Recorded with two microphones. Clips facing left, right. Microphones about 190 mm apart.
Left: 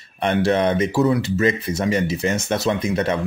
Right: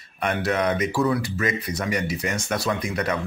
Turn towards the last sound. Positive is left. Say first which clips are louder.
# left 5 dB
turn(degrees=25)  # may be behind; listen again after turning